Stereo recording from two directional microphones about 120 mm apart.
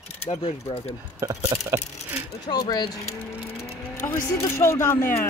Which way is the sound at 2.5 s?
35° left (ahead or behind).